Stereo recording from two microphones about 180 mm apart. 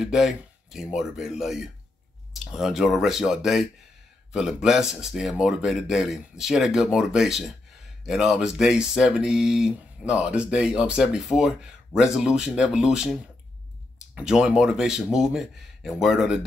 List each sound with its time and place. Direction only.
0.0 s speech: centre (ahead or behind)
14.1 s speech: 5° right (ahead or behind)